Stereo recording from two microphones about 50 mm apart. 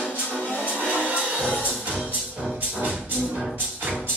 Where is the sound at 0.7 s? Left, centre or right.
Right.